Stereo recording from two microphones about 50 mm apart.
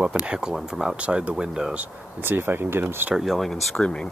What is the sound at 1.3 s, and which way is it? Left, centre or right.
Speech, centre.